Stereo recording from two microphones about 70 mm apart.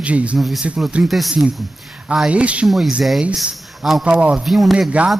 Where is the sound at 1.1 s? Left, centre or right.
Centre.